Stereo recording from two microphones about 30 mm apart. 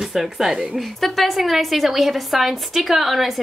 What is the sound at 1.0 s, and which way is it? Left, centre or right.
A woman's voice, centre.